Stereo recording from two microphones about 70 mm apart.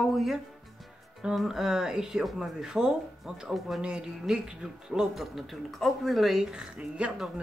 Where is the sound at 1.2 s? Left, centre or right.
Centre.